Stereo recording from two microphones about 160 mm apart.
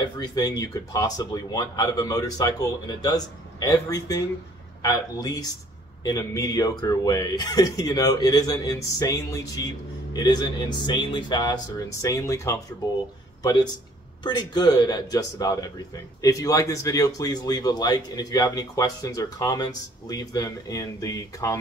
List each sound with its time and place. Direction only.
0.0 s speech: 25° left (ahead or behind)